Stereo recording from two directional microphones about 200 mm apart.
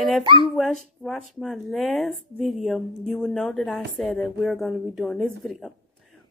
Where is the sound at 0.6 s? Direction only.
Centre (ahead or behind).